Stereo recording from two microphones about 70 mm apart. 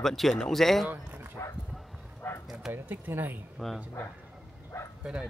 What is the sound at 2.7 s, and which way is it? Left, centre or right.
Speech, right.